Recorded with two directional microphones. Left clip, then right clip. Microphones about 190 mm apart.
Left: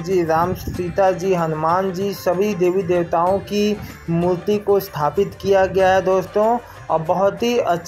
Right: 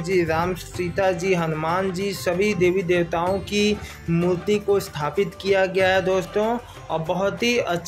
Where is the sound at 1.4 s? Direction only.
20° right (ahead or behind).